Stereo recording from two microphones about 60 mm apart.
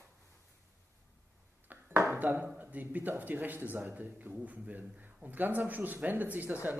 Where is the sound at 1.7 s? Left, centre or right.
Right.